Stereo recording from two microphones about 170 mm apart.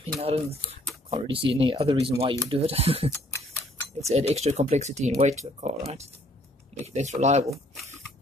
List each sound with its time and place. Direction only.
0.0 s speech: 35° right (ahead or behind)
4.1 s speech: 40° right (ahead or behind)